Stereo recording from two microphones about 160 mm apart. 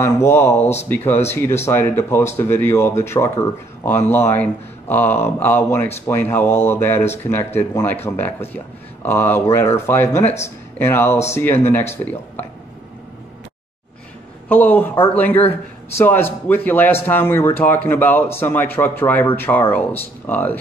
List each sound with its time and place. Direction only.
0.0 s a man's voice: 15° left (ahead or behind)
14.5 s a man's voice: 10° left (ahead or behind)